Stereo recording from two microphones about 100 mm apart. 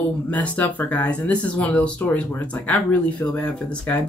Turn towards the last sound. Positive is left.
turn(degrees=15)  # may be behind; listen again after turning